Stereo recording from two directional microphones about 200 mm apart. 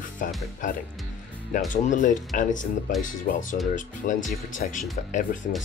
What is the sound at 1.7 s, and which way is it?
Speech, 40° left (ahead or behind).